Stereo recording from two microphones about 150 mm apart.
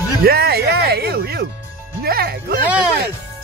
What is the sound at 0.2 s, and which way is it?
Music, 85° right.